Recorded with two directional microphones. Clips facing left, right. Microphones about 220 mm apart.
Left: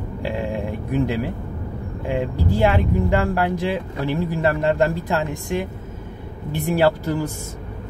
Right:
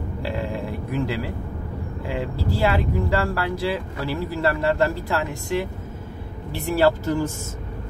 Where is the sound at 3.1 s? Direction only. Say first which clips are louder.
Left 4 dB; 20° left (ahead or behind).